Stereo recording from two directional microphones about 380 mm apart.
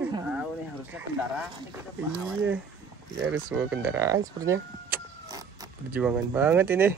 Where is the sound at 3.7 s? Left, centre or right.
Centre.